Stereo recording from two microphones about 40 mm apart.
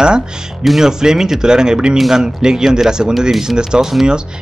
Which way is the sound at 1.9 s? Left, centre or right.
Centre.